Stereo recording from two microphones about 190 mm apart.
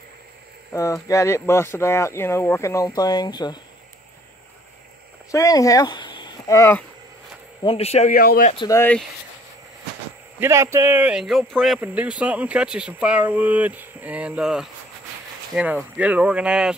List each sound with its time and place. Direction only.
1.0 s speech: 15° left (ahead or behind)
5.3 s speech: 15° left (ahead or behind)
7.6 s speech: 30° left (ahead or behind)
8.1 s speech: 50° left (ahead or behind)
8.6 s speech: 10° left (ahead or behind)
10.4 s speech: 15° right (ahead or behind)